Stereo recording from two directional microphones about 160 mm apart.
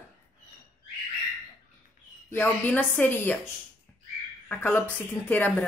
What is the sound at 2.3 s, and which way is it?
A woman's voice, 10° left (ahead or behind).